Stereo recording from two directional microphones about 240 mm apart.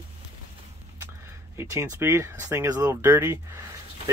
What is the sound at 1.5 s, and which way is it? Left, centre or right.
Speech, centre.